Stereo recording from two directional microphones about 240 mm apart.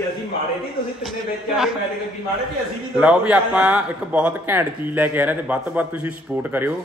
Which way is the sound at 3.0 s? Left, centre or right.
Centre.